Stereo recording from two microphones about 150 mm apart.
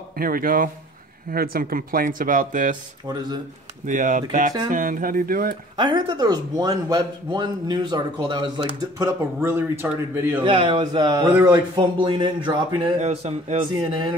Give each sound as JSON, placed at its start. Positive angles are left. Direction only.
{"t": 0.2, "sound": "speech", "side_deg": -75}
{"t": 3.8, "sound": "speech", "side_deg": -60}
{"t": 5.8, "sound": "a man's voice", "side_deg": -30}
{"t": 9.0, "sound": "speech", "side_deg": -15}
{"t": 10.4, "sound": "a man's voice", "side_deg": -35}
{"t": 11.2, "sound": "speech", "side_deg": -10}
{"t": 11.5, "sound": "a man's voice", "side_deg": -30}
{"t": 13.0, "sound": "a man's voice", "side_deg": -45}